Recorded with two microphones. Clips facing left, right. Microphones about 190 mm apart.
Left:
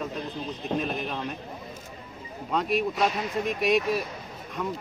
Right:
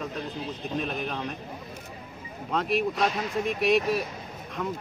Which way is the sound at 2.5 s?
Centre (ahead or behind).